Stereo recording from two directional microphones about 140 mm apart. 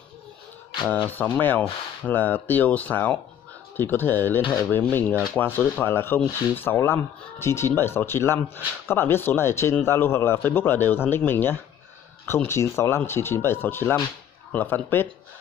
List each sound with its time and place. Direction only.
1.0 s speech: 15° left (ahead or behind)
4.4 s speech: 30° left (ahead or behind)
4.6 s speech: 15° left (ahead or behind)